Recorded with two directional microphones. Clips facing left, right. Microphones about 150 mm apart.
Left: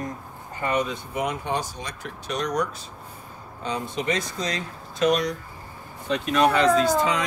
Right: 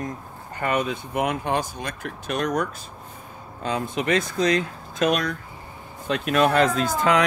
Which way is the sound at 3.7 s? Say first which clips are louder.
Right 3 dB; 55° right (ahead or behind).